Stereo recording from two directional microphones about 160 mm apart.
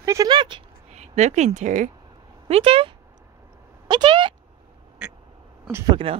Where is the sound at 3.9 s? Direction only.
30° right (ahead or behind).